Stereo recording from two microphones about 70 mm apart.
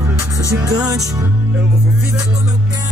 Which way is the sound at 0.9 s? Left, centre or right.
Right.